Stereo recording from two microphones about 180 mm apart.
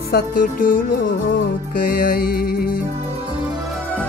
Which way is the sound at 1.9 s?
55° left (ahead or behind).